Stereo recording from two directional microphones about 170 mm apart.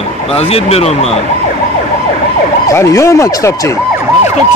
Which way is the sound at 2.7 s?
15° left (ahead or behind).